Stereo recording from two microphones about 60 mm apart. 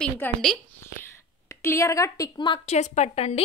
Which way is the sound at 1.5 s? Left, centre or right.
Left.